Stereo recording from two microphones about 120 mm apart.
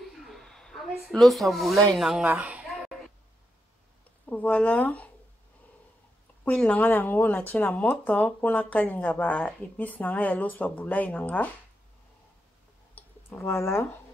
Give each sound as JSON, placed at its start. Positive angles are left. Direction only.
{"t": 0.0, "sound": "speech", "side_deg": 0}
{"t": 2.2, "sound": "speech", "side_deg": -10}
{"t": 4.3, "sound": "speech", "side_deg": 10}
{"t": 6.4, "sound": "speech", "side_deg": 10}
{"t": 12.9, "sound": "clicking", "side_deg": 25}